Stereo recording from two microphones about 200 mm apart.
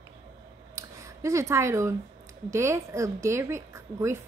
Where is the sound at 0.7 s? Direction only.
15° right (ahead or behind).